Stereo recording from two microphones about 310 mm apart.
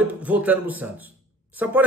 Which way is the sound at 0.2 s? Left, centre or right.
Centre.